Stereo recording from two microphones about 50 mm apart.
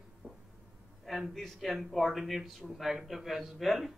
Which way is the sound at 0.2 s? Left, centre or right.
Right.